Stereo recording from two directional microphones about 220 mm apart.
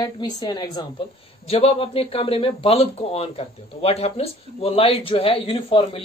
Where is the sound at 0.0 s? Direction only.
20° left (ahead or behind).